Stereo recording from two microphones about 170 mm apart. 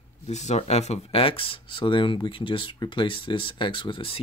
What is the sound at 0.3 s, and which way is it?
Speech, 40° left (ahead or behind).